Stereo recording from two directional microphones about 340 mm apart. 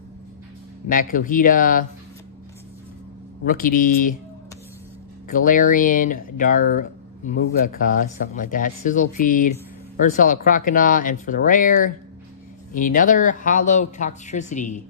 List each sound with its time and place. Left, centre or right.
0.8 s speech: left
3.4 s speech: left
5.3 s speech: left